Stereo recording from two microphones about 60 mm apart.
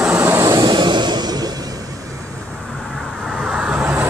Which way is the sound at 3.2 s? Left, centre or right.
Centre.